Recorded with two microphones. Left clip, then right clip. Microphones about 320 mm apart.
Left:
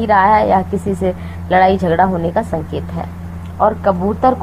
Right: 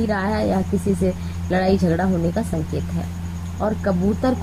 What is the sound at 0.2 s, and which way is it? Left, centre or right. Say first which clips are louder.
Speech: left 12 dB; left.